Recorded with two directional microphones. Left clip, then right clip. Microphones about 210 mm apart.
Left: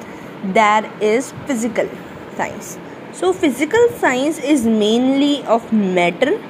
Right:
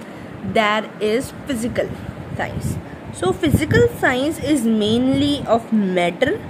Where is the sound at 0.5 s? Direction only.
Centre (ahead or behind).